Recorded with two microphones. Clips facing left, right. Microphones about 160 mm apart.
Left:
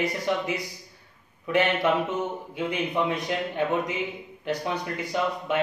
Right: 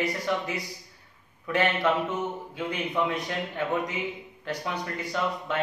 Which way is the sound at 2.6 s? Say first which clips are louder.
Left 2 dB; 20° left (ahead or behind).